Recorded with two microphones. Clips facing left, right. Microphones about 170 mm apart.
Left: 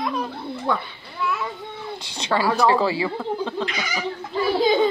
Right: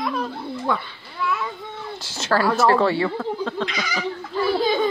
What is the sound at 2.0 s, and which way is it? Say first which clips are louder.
Speech: right 2 dB; 5° right (ahead or behind).